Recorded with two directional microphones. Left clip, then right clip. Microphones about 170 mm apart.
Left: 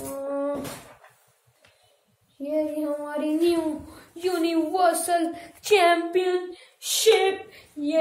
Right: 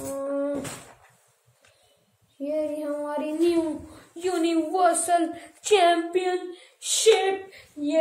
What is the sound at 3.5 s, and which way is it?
A child's voice, 25° left (ahead or behind).